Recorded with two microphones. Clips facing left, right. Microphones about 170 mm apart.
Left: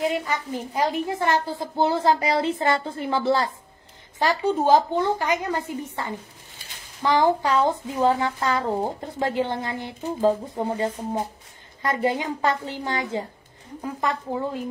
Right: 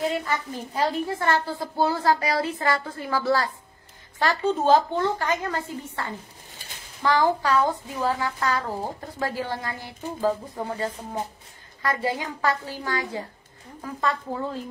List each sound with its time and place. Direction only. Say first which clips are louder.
0.0 s a woman's voice: left 1 dB; 15° left (ahead or behind)